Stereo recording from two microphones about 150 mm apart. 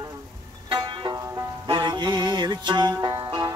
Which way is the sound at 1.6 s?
30° right (ahead or behind).